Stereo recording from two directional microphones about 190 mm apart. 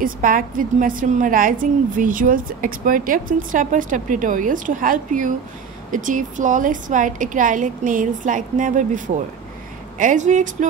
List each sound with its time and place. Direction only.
0.0 s a woman's voice: 45° right (ahead or behind)